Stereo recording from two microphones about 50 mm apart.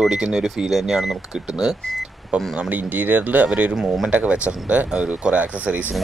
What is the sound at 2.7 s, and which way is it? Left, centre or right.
Speech, right.